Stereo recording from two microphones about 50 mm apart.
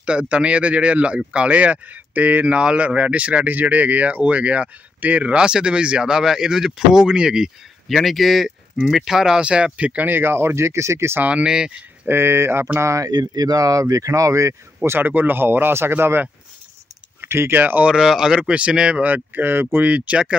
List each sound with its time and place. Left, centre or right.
0.0 s speech: right
2.4 s speech: right
7.9 s speech: centre; by 10.0 s right
10.0 s speech: right
11.2 s speech: centre
12.1 s speech: right
14.1 s speech: right
15.0 s speech: right
17.6 s speech: right
17.8 s speech: centre
19.0 s speech: right
19.9 s speech: right